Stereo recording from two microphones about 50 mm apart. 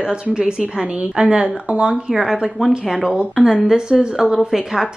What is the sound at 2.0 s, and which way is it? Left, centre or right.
A woman's voice, centre.